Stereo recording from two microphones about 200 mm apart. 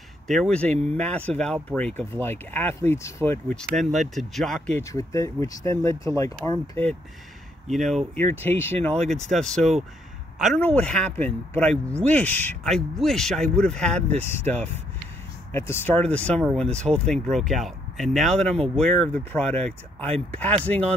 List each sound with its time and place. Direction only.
0.3 s speech: 5° left (ahead or behind)
3.7 s speech: centre (ahead or behind)
4.9 s speech: 15° left (ahead or behind)
7.7 s speech: centre (ahead or behind)